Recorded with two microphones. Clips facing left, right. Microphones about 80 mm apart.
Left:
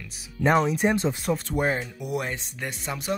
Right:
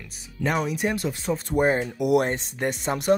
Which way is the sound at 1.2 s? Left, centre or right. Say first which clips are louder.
Even; centre.